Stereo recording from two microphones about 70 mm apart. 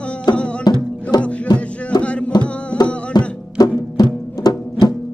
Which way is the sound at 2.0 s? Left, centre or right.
Centre.